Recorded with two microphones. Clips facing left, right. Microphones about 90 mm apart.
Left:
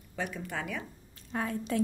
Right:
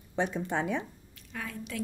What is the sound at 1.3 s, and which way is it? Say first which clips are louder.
Speech: left 6 dB; 35° left (ahead or behind).